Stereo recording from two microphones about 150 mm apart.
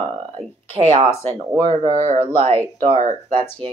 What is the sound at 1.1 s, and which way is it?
Speech, 15° left (ahead or behind).